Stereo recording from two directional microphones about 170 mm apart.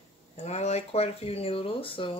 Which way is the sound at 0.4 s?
40° left (ahead or behind).